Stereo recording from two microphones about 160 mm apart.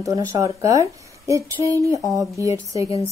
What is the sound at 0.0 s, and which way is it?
A woman's voice, 20° right (ahead or behind).